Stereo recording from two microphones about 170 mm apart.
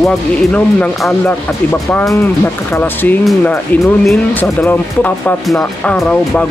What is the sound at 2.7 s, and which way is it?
Speech, 10° left (ahead or behind).